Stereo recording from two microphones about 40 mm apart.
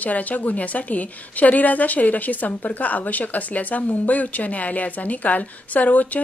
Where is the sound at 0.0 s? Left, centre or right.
Left.